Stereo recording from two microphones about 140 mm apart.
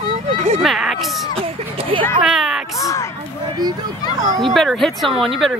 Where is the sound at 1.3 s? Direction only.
40° right (ahead or behind).